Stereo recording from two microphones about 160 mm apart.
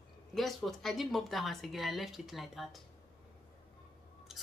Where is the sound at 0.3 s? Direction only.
Centre (ahead or behind).